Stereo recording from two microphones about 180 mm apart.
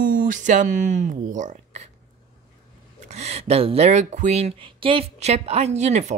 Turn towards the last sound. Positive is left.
turn(degrees=-40)  # may be behind; listen again after turning